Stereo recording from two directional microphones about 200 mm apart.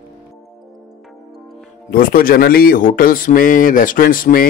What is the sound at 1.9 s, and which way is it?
Speech, 45° left (ahead or behind).